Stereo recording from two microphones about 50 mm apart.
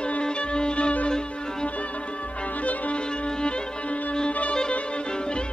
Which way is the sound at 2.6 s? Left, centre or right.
Left.